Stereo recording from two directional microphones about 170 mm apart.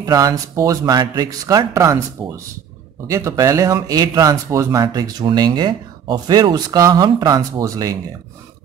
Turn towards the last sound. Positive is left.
turn(degrees=-20)  # may be behind; listen again after turning